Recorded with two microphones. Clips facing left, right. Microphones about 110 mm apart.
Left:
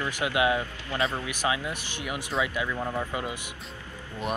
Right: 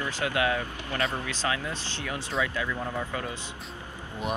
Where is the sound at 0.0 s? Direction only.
20° left (ahead or behind).